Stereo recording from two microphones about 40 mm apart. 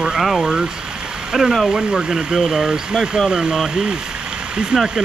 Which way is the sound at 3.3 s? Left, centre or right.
Centre.